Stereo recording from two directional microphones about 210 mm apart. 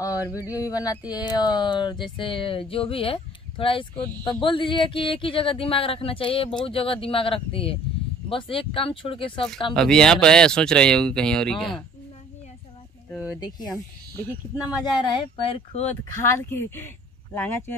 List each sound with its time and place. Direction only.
0.0 s speech: 15° left (ahead or behind)
9.8 s speech: 5° left (ahead or behind)
13.1 s speech: 5° right (ahead or behind)
13.4 s speech: 20° left (ahead or behind)
14.9 s speech: 25° left (ahead or behind)
16.3 s speech: 10° left (ahead or behind)